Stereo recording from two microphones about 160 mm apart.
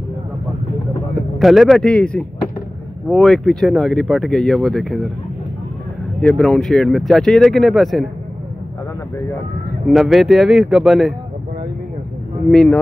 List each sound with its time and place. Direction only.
1.4 s speech: centre (ahead or behind)
6.2 s speech: 5° left (ahead or behind)
9.8 s speech: centre (ahead or behind)
12.4 s speech: 5° left (ahead or behind)